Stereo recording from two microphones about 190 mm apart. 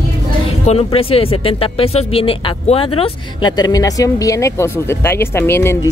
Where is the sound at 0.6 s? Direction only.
30° left (ahead or behind); by 5.9 s 15° left (ahead or behind).